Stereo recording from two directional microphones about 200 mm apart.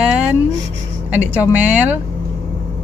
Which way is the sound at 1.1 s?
10° right (ahead or behind).